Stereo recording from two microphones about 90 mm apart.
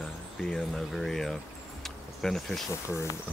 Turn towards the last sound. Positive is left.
turn(degrees=35)  # may be behind; listen again after turning